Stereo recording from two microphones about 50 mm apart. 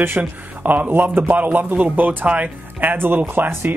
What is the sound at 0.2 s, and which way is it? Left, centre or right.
Speech, right.